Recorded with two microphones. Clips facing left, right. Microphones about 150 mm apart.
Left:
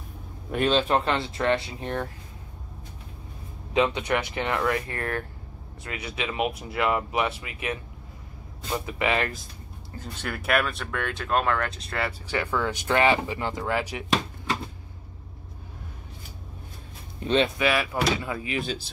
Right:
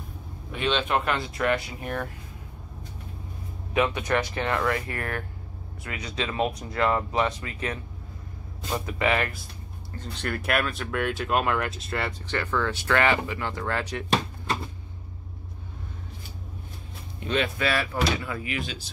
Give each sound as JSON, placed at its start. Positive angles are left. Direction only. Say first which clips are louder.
{"t": 0.5, "sound": "speech", "louder": "left 3 dB", "side_deg": 40}
{"t": 3.7, "sound": "speech", "louder": "left 1 dB", "side_deg": 20}
{"t": 6.2, "sound": "speech", "louder": "even", "side_deg": 10}
{"t": 8.7, "sound": "speech", "louder": "even", "side_deg": 20}
{"t": 9.9, "sound": "speech", "louder": "right 2 dB", "side_deg": 0}
{"t": 17.6, "sound": "speech", "louder": "left 1 dB", "side_deg": 15}